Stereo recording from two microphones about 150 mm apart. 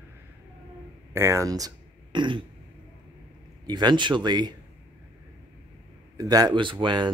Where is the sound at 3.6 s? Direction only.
30° right (ahead or behind).